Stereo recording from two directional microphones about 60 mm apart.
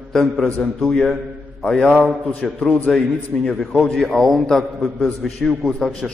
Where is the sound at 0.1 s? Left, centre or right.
Centre.